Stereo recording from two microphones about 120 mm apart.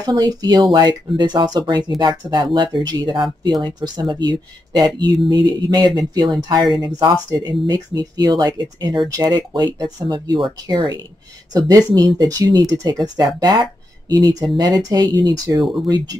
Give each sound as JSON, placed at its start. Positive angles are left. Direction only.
{"t": 0.0, "sound": "speech", "side_deg": -30}